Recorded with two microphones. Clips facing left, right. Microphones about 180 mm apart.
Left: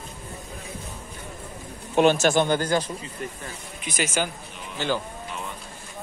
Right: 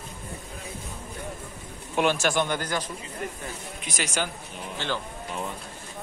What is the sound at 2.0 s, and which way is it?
Speech, 25° left (ahead or behind).